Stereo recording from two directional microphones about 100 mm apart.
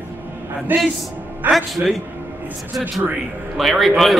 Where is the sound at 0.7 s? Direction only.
20° right (ahead or behind).